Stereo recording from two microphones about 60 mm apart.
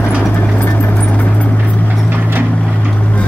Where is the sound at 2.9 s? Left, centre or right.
Left.